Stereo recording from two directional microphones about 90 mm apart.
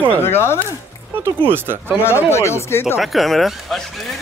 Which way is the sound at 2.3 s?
30° left (ahead or behind).